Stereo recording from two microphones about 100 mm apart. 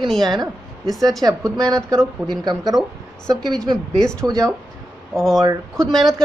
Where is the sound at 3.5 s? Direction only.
40° right (ahead or behind).